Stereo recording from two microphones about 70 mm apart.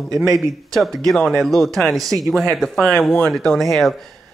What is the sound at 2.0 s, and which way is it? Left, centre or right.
Speech, right.